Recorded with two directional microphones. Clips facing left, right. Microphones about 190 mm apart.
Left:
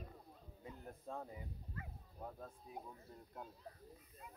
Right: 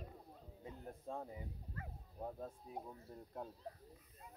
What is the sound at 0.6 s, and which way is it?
Speech, 20° right (ahead or behind).